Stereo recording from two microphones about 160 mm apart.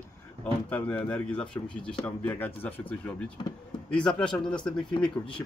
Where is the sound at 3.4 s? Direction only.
30° left (ahead or behind).